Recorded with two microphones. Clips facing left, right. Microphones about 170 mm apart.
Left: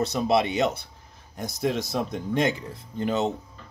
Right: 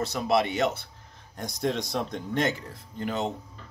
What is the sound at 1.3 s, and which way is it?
Speech, 5° left (ahead or behind).